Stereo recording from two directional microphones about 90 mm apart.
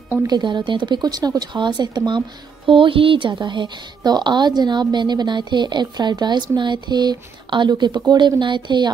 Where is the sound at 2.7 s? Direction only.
75° right (ahead or behind).